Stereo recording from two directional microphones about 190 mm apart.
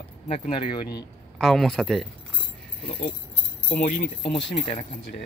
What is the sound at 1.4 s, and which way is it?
Speech, centre (ahead or behind).